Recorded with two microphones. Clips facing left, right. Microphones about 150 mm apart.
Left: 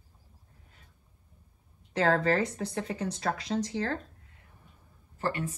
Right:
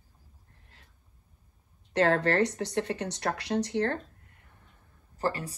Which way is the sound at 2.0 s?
70° right (ahead or behind).